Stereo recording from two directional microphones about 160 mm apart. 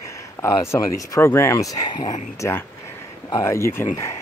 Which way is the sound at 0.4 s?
15° left (ahead or behind).